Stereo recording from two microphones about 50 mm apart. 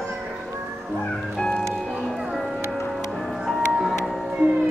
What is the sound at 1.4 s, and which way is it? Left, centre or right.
Music, centre.